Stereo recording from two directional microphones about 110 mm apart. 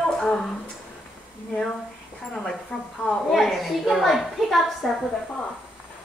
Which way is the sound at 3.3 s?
Centre (ahead or behind).